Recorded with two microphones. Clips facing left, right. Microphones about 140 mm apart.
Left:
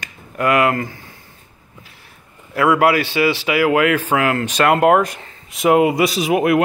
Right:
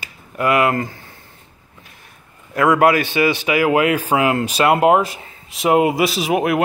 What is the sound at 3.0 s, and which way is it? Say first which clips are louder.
Speech: even; 20° right (ahead or behind).